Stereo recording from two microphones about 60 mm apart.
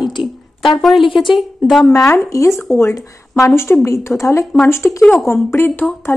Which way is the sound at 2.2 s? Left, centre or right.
Left.